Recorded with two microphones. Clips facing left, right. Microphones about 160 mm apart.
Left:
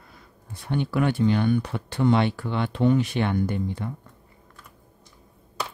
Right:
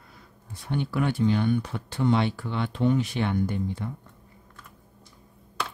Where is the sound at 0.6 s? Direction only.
65° left (ahead or behind).